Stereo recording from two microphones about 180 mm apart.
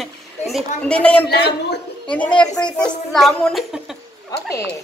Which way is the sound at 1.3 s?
65° left (ahead or behind).